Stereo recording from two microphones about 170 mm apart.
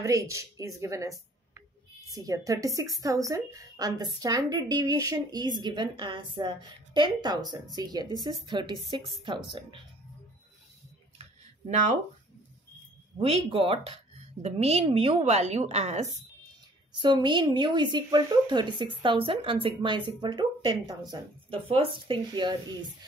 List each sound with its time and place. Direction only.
0.0 s a woman's voice: 20° right (ahead or behind)
13.2 s a woman's voice: 35° right (ahead or behind)
16.9 s speech: 25° right (ahead or behind)